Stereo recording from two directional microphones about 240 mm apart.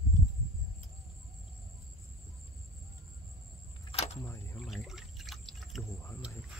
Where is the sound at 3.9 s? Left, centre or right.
Left.